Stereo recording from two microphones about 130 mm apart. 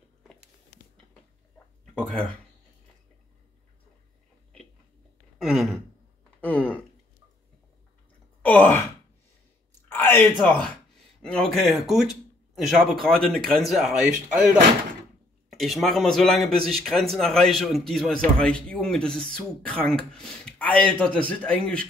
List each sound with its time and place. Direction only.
2.0 s speech: 5° left (ahead or behind)
5.4 s sigh: centre (ahead or behind)
6.4 s a sound: 10° left (ahead or behind)
8.4 s sigh: 10° left (ahead or behind)
9.8 s a sound: 15° left (ahead or behind)
10.4 s a man's voice: 5° left (ahead or behind)